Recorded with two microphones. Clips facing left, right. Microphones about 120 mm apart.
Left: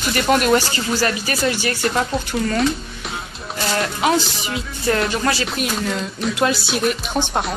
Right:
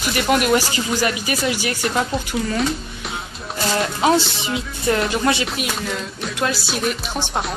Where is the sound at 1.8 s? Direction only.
Centre (ahead or behind).